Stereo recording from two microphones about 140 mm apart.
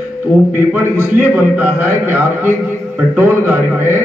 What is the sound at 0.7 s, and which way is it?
A man's voice, 15° right (ahead or behind).